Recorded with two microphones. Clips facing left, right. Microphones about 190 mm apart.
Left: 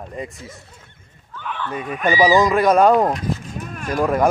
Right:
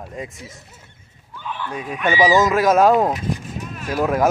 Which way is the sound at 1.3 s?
15° right (ahead or behind).